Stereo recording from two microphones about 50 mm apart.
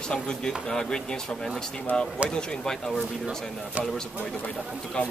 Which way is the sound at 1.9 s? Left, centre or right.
Left.